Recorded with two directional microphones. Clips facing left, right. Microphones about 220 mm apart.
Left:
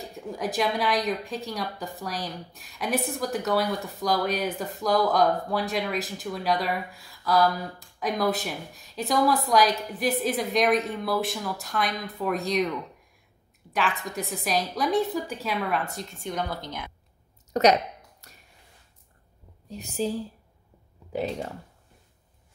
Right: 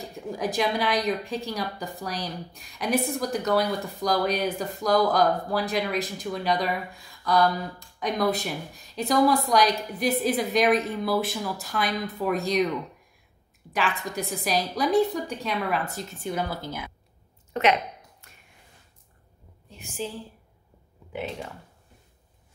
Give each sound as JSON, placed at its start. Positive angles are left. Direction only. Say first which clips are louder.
{"t": 0.1, "sound": "a woman's voice", "louder": "right 2 dB", "side_deg": 0}
{"t": 13.7, "sound": "a woman's voice", "louder": "even", "side_deg": 0}
{"t": 17.5, "sound": "speech", "louder": "left 3 dB", "side_deg": 40}
{"t": 18.2, "sound": "finger snapping", "louder": "left 2 dB", "side_deg": 40}
{"t": 19.7, "sound": "a woman's voice", "louder": "left 6 dB", "side_deg": 40}